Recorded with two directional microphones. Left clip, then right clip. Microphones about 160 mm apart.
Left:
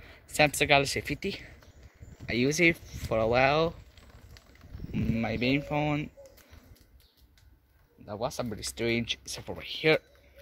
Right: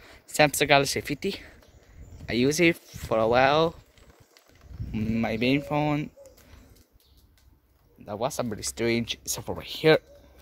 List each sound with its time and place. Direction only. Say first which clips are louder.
0.0 s speech: right 3 dB; 40° right (ahead or behind)
4.9 s speech: right 3 dB; 45° right (ahead or behind)
8.0 s speech: right 4 dB; 55° right (ahead or behind)
8.5 s speech: right 3 dB; 40° right (ahead or behind)